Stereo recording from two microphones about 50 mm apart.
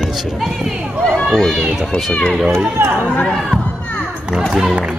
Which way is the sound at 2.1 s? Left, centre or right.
Centre.